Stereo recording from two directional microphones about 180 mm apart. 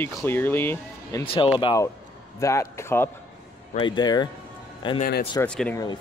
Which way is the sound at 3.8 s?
25° left (ahead or behind).